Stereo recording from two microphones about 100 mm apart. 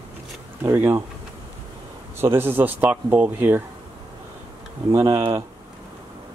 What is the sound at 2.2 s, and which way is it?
Speech, 20° right (ahead or behind).